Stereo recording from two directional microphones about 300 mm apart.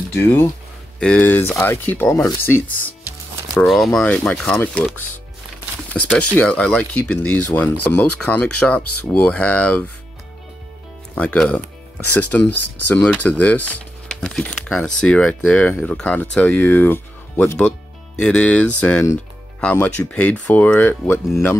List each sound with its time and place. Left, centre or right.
0.1 s speech: centre
6.0 s speech: centre
11.1 s speech: centre
12.5 s speech: left
12.9 s speech: centre